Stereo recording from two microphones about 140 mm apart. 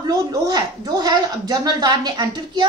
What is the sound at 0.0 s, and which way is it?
Speech, 25° right (ahead or behind).